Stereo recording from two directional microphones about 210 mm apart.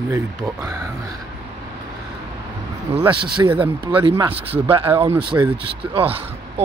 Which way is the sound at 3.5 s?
10° right (ahead or behind).